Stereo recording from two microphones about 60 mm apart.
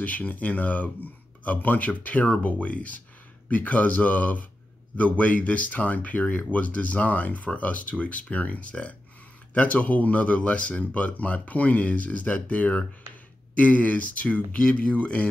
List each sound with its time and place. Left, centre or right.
0.0 s speech: left